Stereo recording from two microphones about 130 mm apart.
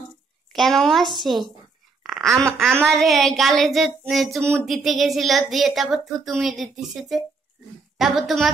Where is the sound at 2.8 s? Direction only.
Centre (ahead or behind).